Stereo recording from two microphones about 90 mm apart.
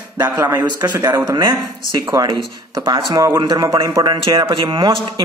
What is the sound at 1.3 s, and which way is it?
A man's voice, 50° right (ahead or behind).